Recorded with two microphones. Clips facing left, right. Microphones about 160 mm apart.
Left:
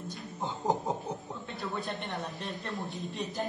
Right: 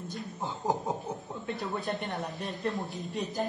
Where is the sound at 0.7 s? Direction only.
Centre (ahead or behind).